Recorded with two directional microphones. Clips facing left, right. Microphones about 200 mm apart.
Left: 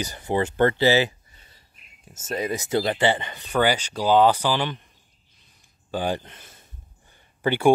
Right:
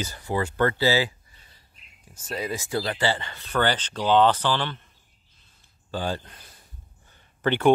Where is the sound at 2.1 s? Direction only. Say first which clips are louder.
Left 4 dB; 45° left (ahead or behind).